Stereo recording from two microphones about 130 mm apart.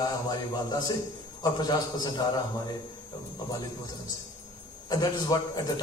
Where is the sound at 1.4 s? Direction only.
30° left (ahead or behind).